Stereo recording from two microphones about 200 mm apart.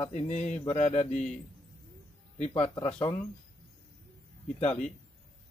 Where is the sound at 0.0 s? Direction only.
35° left (ahead or behind).